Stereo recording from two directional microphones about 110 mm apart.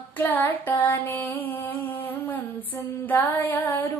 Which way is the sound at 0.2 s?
15° left (ahead or behind).